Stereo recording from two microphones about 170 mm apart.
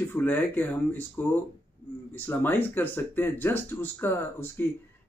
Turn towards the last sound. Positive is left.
turn(degrees=10)  # may be behind; listen again after turning